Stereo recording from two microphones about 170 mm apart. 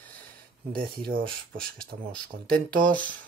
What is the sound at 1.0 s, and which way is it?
Speech, 60° right (ahead or behind).